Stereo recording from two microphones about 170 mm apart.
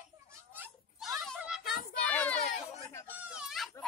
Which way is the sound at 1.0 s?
Centre (ahead or behind).